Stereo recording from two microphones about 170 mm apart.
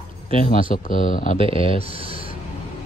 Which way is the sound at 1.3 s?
35° right (ahead or behind).